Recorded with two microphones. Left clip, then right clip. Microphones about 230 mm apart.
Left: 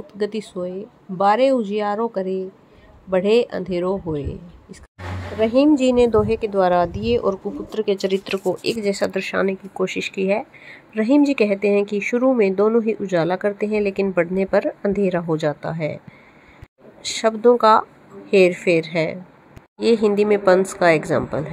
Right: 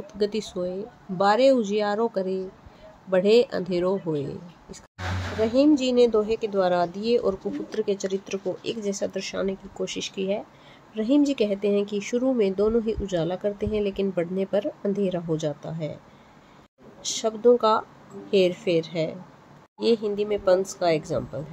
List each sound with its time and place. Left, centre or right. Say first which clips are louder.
0.0 s speech: left 2 dB; centre
17.1 s speech: left 4 dB; centre